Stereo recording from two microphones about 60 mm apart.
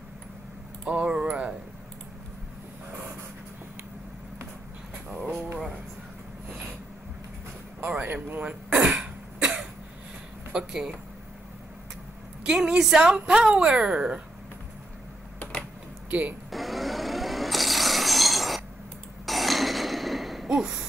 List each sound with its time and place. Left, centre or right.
0.8 s a sound: centre
7.9 s throat clearing: right
9.4 s cough: centre
10.5 s speech: centre
12.4 s speech: centre
15.3 s typing: left
16.1 s speech: right
16.5 s a sound: centre